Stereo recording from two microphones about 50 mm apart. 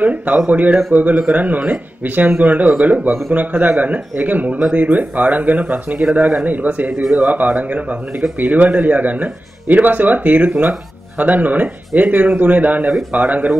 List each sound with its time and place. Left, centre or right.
0.0 s speech: right
10.5 s speech: right
11.1 s speech: right